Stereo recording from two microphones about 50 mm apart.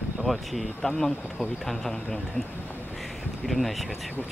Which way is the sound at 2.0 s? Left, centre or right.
Left.